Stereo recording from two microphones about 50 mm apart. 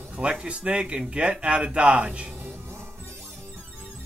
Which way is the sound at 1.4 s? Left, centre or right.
Right.